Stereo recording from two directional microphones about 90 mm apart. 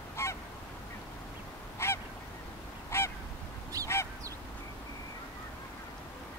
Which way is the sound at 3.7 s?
40° right (ahead or behind).